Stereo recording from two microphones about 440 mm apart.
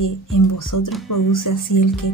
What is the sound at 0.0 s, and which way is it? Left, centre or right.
A woman's voice, left.